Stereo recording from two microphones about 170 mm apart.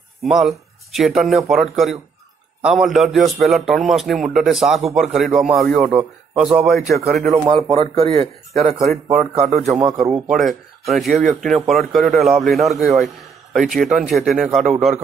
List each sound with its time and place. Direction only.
0.2 s a man's voice: centre (ahead or behind)
7.4 s speech: 25° right (ahead or behind)
9.8 s speech: 20° right (ahead or behind)
10.2 s a man's voice: centre (ahead or behind)